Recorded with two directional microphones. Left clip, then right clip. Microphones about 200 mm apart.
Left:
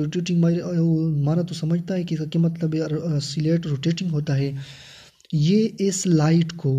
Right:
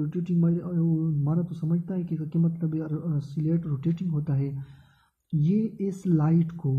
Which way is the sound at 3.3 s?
5° left (ahead or behind).